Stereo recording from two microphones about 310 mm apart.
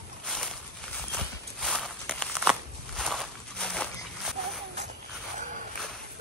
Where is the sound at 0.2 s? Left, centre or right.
Centre.